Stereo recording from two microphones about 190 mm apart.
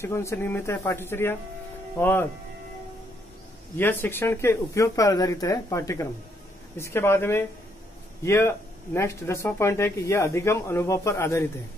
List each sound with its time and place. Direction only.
0.0 s speech: 15° left (ahead or behind)
3.7 s speech: 10° left (ahead or behind)